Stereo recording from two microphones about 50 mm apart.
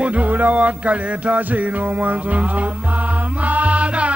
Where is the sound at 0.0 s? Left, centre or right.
Right.